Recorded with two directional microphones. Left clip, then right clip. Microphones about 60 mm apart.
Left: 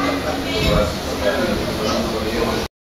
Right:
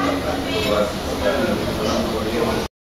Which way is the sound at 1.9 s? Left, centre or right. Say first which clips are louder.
Even; centre.